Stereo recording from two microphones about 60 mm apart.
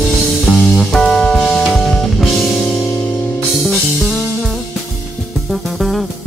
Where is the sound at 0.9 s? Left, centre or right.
Centre.